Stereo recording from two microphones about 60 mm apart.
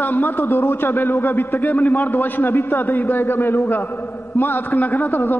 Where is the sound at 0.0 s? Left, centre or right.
Left.